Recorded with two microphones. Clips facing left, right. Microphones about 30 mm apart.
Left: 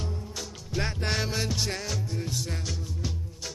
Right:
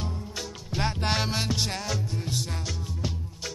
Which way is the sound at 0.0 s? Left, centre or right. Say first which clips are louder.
Right 2 dB; right.